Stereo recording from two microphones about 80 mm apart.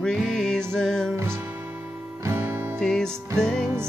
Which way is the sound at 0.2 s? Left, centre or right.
Centre.